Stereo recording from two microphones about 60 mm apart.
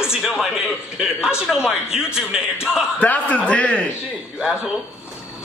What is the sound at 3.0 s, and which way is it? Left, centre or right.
Speech, left.